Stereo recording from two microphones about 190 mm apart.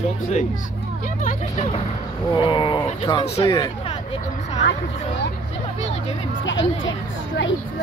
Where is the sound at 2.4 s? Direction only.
25° left (ahead or behind).